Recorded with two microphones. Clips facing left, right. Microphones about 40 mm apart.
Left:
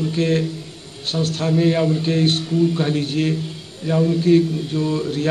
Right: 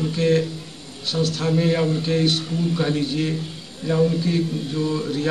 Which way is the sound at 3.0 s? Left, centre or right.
Left.